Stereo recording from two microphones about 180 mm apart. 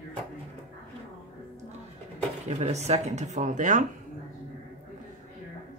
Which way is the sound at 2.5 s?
40° right (ahead or behind).